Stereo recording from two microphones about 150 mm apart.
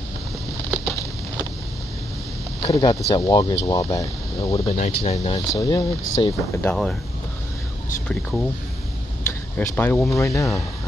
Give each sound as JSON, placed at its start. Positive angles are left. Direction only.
{"t": 2.6, "sound": "speech", "side_deg": 25}
{"t": 4.6, "sound": "speech", "side_deg": 45}
{"t": 5.5, "sound": "speech", "side_deg": 25}
{"t": 6.6, "sound": "speech", "side_deg": 5}
{"t": 8.1, "sound": "speech", "side_deg": 0}
{"t": 9.6, "sound": "speech", "side_deg": 10}